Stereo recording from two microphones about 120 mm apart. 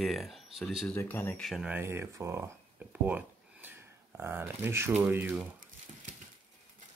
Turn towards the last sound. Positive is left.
turn(degrees=-15)  # may be behind; listen again after turning